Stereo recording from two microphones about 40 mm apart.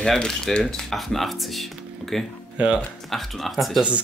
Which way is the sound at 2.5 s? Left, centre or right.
Right.